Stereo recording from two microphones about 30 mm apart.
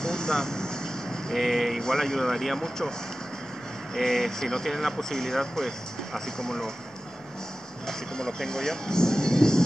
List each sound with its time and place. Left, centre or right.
0.0 s vehicle: left
1.3 s speech: centre
1.8 s speech: centre
3.9 s speech: centre
4.6 s speech: centre
7.8 s speech: centre